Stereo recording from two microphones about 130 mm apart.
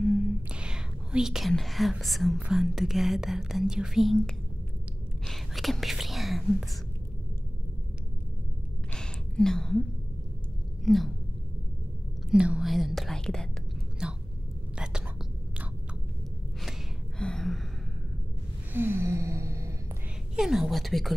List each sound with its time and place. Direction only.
0.0 s whispering: 5° right (ahead or behind)
2.4 s speech: 5° right (ahead or behind)
5.2 s speech: centre (ahead or behind)
8.9 s a sound: 5° left (ahead or behind)
10.8 s speech: centre (ahead or behind)
12.3 s speech: 5° right (ahead or behind)
14.8 s whispering: 5° right (ahead or behind)
17.2 s gasp: 5° left (ahead or behind)
18.7 s gasp: 15° right (ahead or behind)
20.3 s speech: 5° right (ahead or behind)